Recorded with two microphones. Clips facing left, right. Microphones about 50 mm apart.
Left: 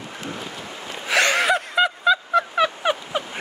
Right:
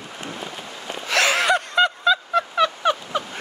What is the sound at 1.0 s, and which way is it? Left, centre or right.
Gasp, centre.